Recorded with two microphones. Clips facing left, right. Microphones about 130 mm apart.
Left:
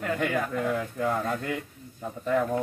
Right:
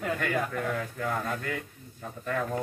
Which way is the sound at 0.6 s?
15° left (ahead or behind).